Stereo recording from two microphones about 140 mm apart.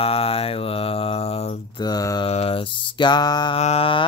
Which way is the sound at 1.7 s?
30° left (ahead or behind).